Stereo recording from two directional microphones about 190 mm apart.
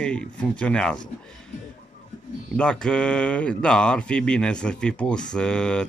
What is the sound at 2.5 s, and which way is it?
Speech, 5° left (ahead or behind).